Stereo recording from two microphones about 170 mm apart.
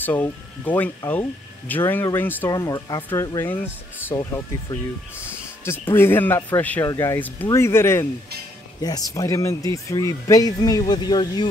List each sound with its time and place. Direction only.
0.0 s speech: 10° left (ahead or behind)
9.1 s speech: 20° left (ahead or behind)